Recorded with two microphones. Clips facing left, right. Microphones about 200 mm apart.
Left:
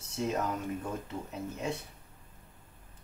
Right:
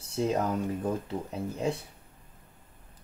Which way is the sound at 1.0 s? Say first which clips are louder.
Right 4 dB; 35° right (ahead or behind).